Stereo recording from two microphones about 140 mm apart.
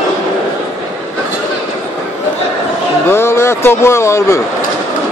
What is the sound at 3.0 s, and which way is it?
A man's voice, 20° left (ahead or behind).